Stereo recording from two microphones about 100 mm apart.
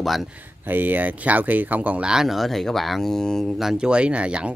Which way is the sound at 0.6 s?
20° right (ahead or behind).